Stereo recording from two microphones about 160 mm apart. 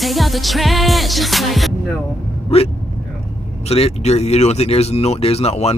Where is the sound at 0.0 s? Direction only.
Centre (ahead or behind).